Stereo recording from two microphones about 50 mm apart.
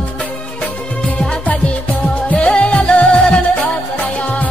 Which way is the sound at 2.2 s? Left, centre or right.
Left.